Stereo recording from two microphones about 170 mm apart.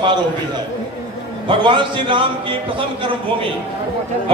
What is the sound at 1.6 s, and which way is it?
A man's voice, 30° right (ahead or behind).